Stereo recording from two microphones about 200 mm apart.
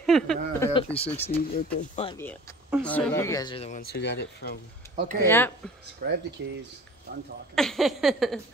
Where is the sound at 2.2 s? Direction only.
10° left (ahead or behind).